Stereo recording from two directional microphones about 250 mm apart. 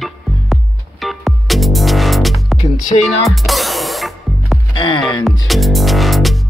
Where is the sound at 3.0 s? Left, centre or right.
Centre.